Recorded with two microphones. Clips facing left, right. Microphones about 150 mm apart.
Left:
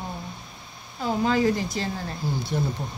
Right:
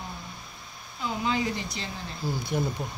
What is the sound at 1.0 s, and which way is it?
Speech, 45° left (ahead or behind).